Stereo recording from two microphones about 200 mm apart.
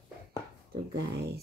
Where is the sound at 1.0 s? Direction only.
55° right (ahead or behind).